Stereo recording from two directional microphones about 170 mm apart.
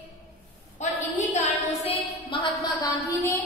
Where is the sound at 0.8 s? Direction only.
45° left (ahead or behind).